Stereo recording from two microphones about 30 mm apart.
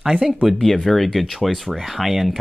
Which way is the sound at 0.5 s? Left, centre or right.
Centre.